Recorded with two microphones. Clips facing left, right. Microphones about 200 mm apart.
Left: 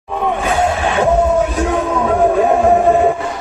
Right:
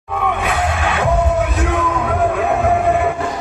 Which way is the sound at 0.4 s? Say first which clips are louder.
Left 4 dB; 30° left (ahead or behind).